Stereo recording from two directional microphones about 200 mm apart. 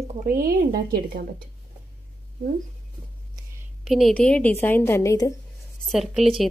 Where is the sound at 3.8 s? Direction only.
Centre (ahead or behind); by 5.4 s 15° left (ahead or behind).